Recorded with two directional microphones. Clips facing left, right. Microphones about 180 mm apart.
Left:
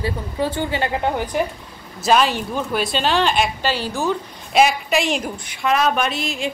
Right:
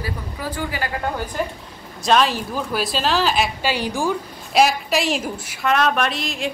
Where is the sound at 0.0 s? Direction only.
25° left (ahead or behind).